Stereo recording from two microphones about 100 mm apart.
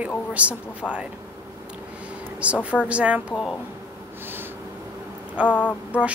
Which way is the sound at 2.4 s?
10° right (ahead or behind).